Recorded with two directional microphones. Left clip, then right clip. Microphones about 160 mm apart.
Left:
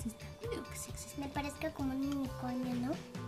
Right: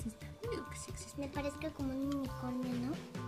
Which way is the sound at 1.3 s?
20° left (ahead or behind).